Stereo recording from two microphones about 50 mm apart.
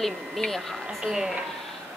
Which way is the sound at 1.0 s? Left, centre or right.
Centre.